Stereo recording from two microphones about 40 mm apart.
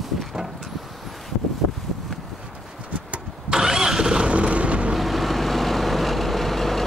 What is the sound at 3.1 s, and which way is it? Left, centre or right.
Vehicle, centre.